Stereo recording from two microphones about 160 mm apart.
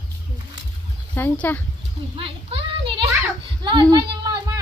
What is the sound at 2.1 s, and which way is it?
Speech, 35° right (ahead or behind).